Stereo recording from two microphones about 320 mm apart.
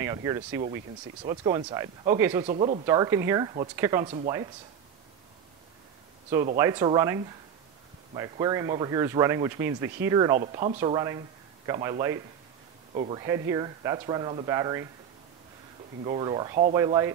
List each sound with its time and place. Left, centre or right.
0.0 s speech: centre
6.3 s speech: centre
12.9 s speech: right
13.2 s speech: centre
16.0 s speech: centre